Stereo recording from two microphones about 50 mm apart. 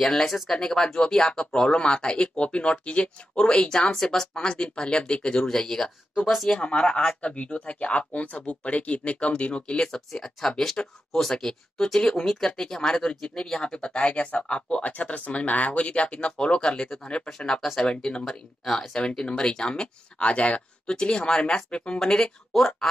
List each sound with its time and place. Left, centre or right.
0.0 s speech: centre
4.3 s speech: centre
6.6 s speech: centre
11.1 s speech: centre
14.1 s speech: left; by 22.7 s centre